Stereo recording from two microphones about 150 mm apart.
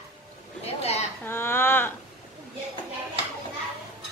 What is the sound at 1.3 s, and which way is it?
Speech, 15° left (ahead or behind).